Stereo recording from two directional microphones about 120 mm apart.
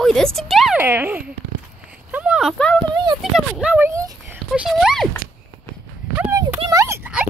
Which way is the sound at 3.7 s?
15° right (ahead or behind).